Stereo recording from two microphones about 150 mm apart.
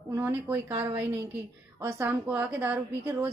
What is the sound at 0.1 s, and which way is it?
A woman's voice, 15° right (ahead or behind).